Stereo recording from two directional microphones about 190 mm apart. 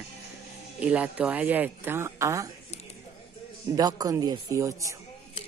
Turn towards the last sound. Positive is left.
turn(degrees=-15)  # may be behind; listen again after turning